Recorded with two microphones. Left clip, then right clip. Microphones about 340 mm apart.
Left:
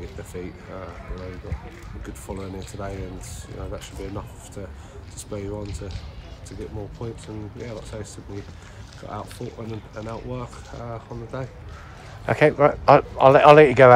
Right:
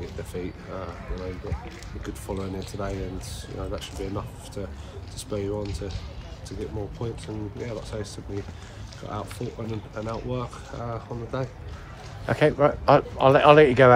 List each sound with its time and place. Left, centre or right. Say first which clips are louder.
2.0 s speech: right 2 dB; centre
5.3 s speech: right 3 dB; centre
9.0 s speech: even; centre
12.3 s a man's voice: left 3 dB; centre